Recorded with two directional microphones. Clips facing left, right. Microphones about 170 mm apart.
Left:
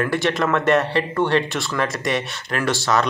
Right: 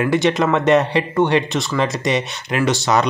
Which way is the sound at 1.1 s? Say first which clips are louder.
Right 4 dB; 20° right (ahead or behind).